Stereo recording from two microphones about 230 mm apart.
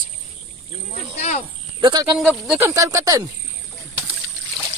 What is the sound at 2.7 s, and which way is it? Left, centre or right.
Speech, centre.